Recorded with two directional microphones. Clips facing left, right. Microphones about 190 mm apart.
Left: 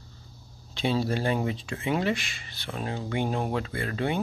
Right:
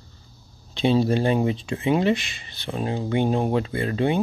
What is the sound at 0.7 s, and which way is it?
Speech, 20° right (ahead or behind).